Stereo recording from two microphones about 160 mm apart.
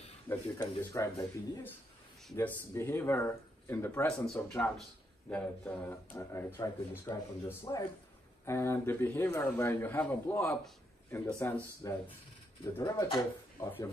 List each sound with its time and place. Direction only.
0.3 s speech: 20° left (ahead or behind)